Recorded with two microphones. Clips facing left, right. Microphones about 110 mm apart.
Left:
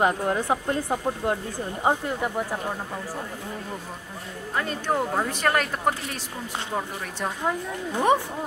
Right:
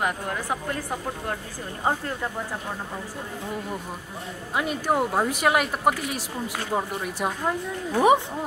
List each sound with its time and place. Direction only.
0.0 s speech: 25° left (ahead or behind)
4.6 s speech: 10° right (ahead or behind)